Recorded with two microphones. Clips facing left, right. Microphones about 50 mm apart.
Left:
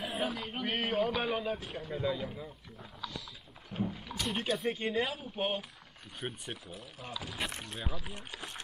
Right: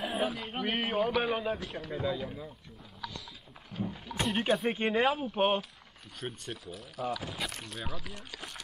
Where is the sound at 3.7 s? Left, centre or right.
Left.